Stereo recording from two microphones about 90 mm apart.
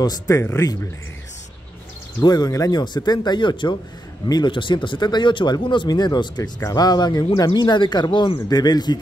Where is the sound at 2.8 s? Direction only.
55° left (ahead or behind).